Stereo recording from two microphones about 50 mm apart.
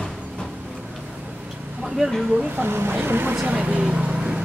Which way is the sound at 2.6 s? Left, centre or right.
Right.